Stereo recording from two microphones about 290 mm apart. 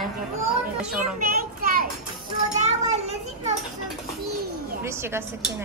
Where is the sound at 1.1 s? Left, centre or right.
Right.